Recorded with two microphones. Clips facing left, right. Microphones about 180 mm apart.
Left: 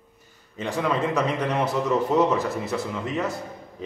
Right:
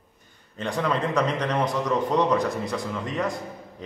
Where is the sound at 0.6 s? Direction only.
5° left (ahead or behind).